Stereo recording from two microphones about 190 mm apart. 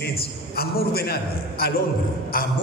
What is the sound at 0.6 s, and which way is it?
A man's voice, 55° left (ahead or behind).